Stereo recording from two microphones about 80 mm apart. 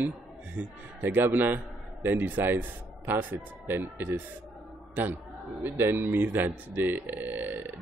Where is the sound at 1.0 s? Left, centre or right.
Right.